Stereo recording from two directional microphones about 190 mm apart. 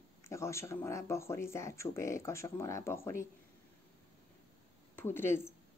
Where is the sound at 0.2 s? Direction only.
15° left (ahead or behind).